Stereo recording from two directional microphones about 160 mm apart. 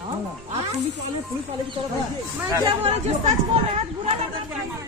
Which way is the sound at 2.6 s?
40° right (ahead or behind).